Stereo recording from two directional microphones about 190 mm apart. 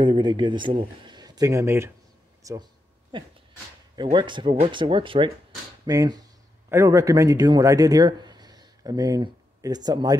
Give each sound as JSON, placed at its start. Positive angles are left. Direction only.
{"t": 0.0, "sound": "speech", "side_deg": -25}
{"t": 2.4, "sound": "a sound", "side_deg": -20}
{"t": 3.9, "sound": "speech", "side_deg": -25}